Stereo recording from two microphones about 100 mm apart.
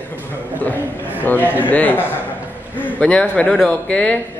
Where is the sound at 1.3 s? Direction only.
20° left (ahead or behind).